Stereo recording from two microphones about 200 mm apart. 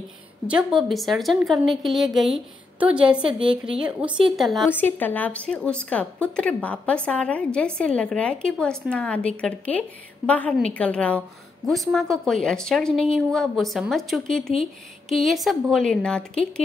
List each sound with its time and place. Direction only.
0.5 s a woman's voice: 5° right (ahead or behind)
3.3 s a woman's voice: 25° right (ahead or behind)
3.8 s a woman's voice: 5° right (ahead or behind)